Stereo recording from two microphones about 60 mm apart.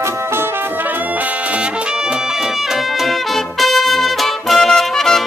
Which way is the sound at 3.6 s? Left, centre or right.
Centre.